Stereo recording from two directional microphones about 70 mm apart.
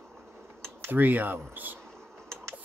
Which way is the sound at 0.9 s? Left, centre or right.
Right.